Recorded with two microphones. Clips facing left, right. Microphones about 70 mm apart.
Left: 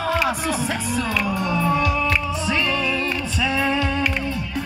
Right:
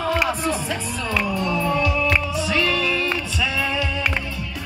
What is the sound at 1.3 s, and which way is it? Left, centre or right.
Music, centre.